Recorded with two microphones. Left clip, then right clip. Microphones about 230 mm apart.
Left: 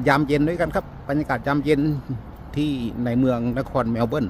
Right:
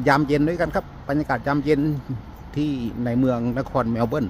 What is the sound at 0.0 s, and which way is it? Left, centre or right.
A man's voice, centre.